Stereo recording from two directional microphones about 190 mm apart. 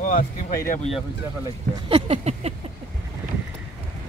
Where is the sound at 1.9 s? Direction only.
30° right (ahead or behind).